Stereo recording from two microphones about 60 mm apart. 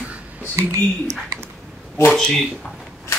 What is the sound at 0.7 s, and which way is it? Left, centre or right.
Speech, right.